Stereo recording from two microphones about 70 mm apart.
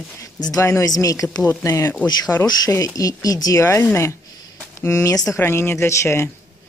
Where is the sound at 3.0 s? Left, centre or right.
Left.